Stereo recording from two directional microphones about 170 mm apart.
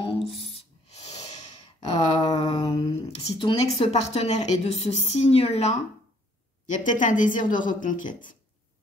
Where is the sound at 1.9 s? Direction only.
30° left (ahead or behind).